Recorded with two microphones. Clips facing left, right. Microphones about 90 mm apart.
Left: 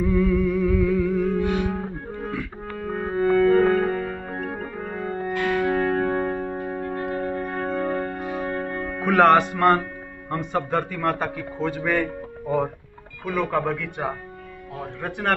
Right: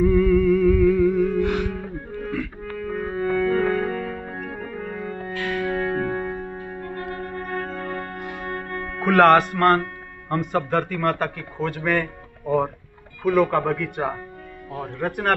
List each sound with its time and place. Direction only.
0.2 s music: 10° left (ahead or behind)
1.7 s music: 30° left (ahead or behind)
7.0 s brass instrument: 25° left (ahead or behind)
7.6 s music: 30° left (ahead or behind)
9.0 s a man's voice: centre (ahead or behind)